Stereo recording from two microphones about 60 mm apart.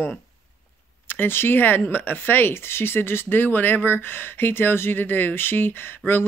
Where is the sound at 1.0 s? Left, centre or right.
Left.